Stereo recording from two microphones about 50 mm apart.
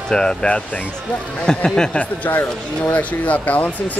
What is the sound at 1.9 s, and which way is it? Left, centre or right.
Speech, left.